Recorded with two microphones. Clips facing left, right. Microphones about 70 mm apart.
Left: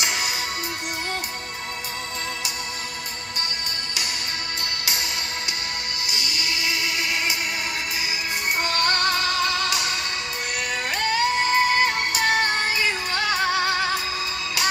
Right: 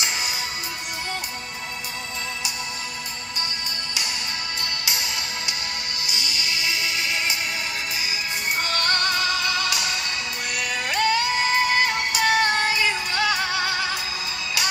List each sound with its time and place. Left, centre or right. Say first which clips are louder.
0.0 s music: left 2 dB; left
6.0 s music: even; left
8.6 s music: left 2 dB; left